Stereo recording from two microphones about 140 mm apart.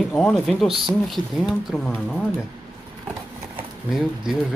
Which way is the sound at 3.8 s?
5° right (ahead or behind).